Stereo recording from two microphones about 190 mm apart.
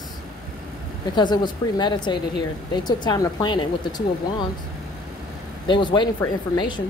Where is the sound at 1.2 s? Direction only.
25° left (ahead or behind).